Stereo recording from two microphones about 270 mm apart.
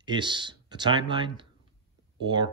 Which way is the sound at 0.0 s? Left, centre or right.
Centre.